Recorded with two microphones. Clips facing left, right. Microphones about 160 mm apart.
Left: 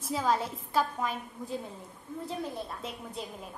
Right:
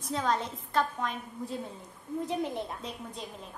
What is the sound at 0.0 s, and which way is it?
A woman's voice, 5° left (ahead or behind).